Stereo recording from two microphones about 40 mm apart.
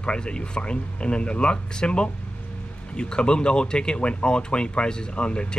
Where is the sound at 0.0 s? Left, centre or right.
Left.